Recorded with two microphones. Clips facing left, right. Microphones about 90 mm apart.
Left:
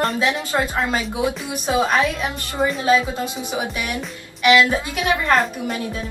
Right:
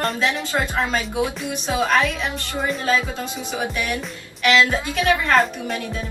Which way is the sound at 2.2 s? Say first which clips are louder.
Left 3 dB; centre (ahead or behind).